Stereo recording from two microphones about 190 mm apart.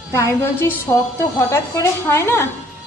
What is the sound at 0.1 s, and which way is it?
A woman's voice, 10° left (ahead or behind).